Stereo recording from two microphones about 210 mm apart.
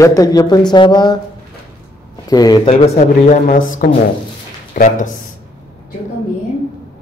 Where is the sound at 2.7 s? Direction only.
35° left (ahead or behind).